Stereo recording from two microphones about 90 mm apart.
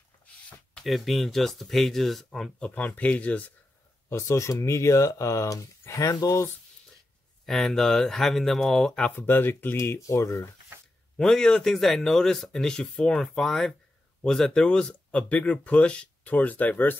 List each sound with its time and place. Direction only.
0.8 s speech: centre (ahead or behind)
3.0 s speech: 15° left (ahead or behind)
4.1 s speech: 35° left (ahead or behind)
7.4 s speech: 5° left (ahead or behind)
9.1 s speech: 20° left (ahead or behind)
9.8 s speech: 35° left (ahead or behind)
11.1 s speech: 5° left (ahead or behind)